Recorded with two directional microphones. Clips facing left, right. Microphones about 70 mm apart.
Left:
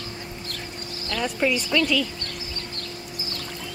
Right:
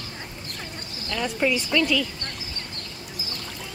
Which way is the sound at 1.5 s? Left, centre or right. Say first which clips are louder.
Even; centre.